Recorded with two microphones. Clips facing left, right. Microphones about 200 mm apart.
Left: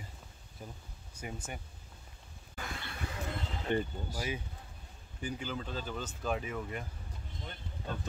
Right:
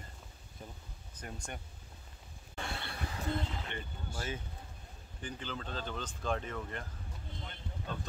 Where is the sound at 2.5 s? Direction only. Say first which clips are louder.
Right 2 dB; 30° right (ahead or behind).